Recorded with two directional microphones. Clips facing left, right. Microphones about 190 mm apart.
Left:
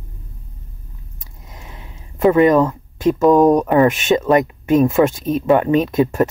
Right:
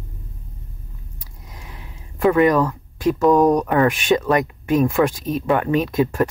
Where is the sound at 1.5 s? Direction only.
25° left (ahead or behind).